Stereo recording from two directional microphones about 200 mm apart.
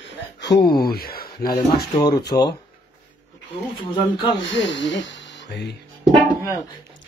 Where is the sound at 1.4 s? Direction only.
20° left (ahead or behind).